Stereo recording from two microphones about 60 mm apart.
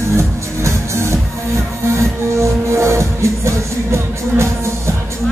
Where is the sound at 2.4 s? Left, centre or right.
Right.